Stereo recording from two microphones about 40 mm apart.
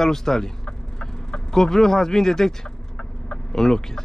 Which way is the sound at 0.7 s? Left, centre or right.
Left.